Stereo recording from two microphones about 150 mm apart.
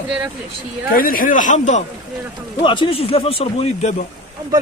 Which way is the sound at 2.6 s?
35° left (ahead or behind).